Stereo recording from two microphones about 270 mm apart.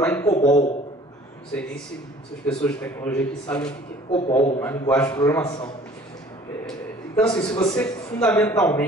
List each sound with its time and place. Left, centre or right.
0.0 s a man's voice: centre
0.3 s a man's voice: left
2.4 s a man's voice: centre
4.1 s a man's voice: left
4.6 s a man's voice: centre
7.2 s a man's voice: centre